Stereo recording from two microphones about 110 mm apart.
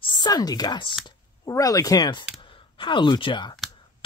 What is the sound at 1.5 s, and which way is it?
A woman's voice, 30° left (ahead or behind).